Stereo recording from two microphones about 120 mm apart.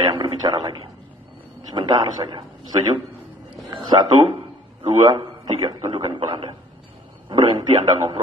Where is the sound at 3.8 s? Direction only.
35° right (ahead or behind).